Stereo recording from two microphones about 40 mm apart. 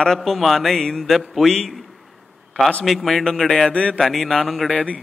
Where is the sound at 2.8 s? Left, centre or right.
Centre.